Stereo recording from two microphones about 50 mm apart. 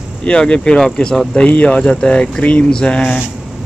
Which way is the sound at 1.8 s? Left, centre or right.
Centre.